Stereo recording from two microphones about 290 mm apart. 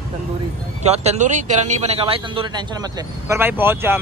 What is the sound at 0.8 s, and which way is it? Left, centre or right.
A man's voice, right.